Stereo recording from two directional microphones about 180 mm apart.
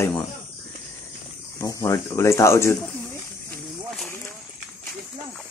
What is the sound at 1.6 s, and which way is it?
Speech, 15° left (ahead or behind).